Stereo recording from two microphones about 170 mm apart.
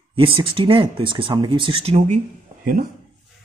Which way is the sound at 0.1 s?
30° right (ahead or behind).